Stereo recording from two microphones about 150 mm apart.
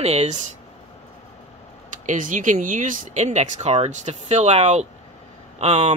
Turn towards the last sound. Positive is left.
turn(degrees=-45)  # may be behind; listen again after turning